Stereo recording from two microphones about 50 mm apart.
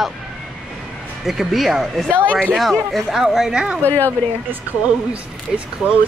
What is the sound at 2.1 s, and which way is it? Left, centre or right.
Speech, left.